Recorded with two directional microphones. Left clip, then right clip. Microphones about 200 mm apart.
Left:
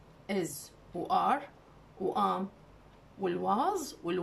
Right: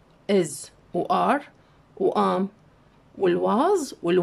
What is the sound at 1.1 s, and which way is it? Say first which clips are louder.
Speech: right 6 dB; 45° right (ahead or behind).